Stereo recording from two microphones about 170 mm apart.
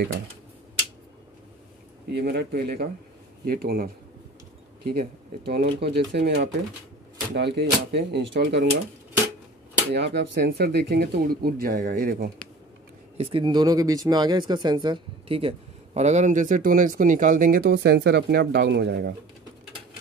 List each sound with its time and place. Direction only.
2.1 s speech: 70° right (ahead or behind); by 8.7 s 90° right
9.9 s speech: 80° right; by 12.3 s 60° right (ahead or behind)
13.2 s a woman's voice: 30° right (ahead or behind); by 19.1 s 65° right (ahead or behind)